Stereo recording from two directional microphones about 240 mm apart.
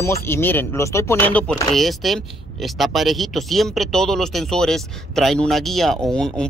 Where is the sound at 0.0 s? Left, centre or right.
Centre.